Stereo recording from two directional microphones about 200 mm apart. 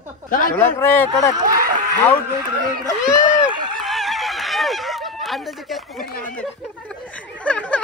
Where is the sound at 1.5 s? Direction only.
45° right (ahead or behind).